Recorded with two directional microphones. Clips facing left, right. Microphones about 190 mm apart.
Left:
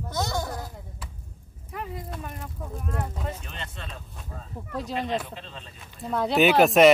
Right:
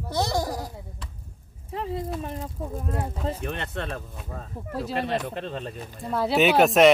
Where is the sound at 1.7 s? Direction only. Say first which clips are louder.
Right 6 dB; 30° right (ahead or behind).